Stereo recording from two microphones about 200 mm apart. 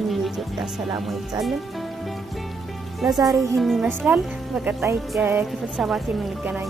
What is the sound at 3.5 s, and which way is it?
Speech, centre (ahead or behind).